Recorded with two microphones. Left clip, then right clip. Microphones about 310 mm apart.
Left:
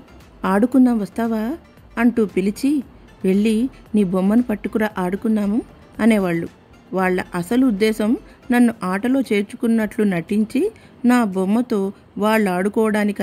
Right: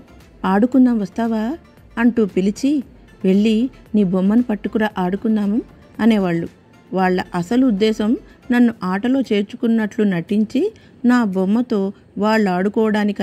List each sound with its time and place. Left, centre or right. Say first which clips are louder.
0.4 s speech: right 1 dB; centre